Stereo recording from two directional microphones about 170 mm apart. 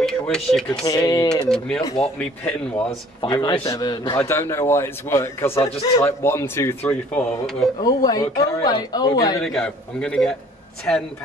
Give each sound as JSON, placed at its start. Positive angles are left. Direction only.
{"t": 0.0, "sound": "speech", "side_deg": 5}
{"t": 0.8, "sound": "speech", "side_deg": 20}
{"t": 1.3, "sound": "speech", "side_deg": 5}
{"t": 3.2, "sound": "speech", "side_deg": 25}
{"t": 4.2, "sound": "a man's voice", "side_deg": 15}
{"t": 7.8, "sound": "speech", "side_deg": 20}
{"t": 9.4, "sound": "speech", "side_deg": 5}